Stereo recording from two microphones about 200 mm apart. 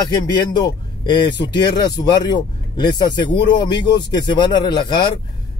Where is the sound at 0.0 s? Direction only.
20° left (ahead or behind).